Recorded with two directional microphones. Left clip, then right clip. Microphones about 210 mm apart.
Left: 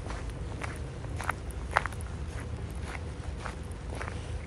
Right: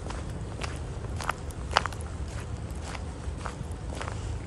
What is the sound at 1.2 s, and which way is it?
Walk, 5° right (ahead or behind).